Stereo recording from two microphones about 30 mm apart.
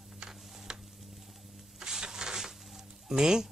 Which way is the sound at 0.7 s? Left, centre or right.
Right.